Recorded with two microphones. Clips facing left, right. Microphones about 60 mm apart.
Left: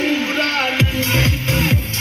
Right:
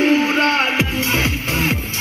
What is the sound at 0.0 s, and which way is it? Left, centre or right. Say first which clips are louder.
Music: right 4 dB; right.